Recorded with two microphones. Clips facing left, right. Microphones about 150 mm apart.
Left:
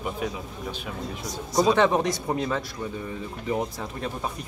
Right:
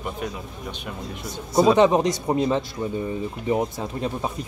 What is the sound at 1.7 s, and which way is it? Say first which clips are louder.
Speech: right 4 dB; 20° right (ahead or behind).